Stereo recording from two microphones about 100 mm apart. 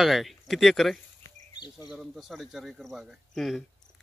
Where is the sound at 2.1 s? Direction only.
Centre (ahead or behind).